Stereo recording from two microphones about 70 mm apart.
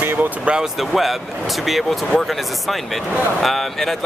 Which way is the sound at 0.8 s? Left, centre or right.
Centre.